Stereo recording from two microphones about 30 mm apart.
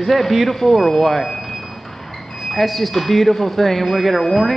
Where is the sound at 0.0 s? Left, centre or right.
Centre.